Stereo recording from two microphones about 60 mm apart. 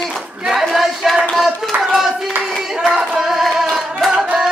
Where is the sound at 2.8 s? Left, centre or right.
Centre.